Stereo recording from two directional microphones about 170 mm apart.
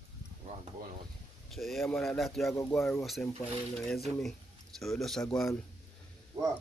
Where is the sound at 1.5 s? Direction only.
Centre (ahead or behind).